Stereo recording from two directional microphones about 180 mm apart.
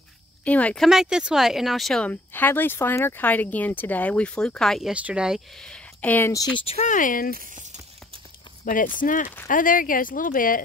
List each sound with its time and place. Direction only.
0.5 s speech: 5° left (ahead or behind)
6.5 s speech: 35° left (ahead or behind); by 7.3 s 50° left (ahead or behind)
7.3 s a sound: 45° right (ahead or behind)
8.6 s speech: 50° left (ahead or behind)